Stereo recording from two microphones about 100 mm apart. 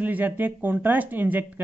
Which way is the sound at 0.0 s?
15° right (ahead or behind).